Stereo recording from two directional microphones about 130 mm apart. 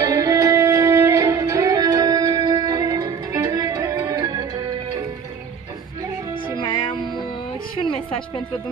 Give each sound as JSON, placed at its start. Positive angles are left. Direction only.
{"t": 0.0, "sound": "music", "side_deg": -25}
{"t": 6.6, "sound": "music", "side_deg": 40}